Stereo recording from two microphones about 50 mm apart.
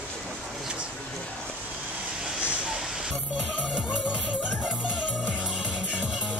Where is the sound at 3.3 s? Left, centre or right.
Right.